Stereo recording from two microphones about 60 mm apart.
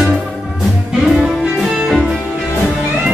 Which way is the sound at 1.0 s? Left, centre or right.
Centre.